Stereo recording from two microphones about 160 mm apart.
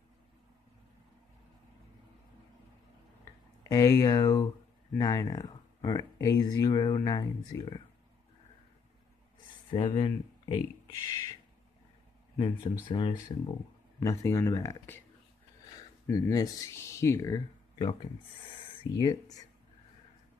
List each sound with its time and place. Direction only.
3.6 s speech: 20° left (ahead or behind)
9.7 s speech: 30° left (ahead or behind)
12.4 s speech: 30° left (ahead or behind)
13.9 s speech: 20° left (ahead or behind)
16.1 s speech: 20° left (ahead or behind)